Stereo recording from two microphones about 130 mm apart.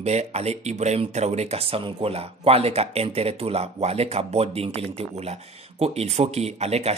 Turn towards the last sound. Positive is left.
turn(degrees=-55)  # may be behind; listen again after turning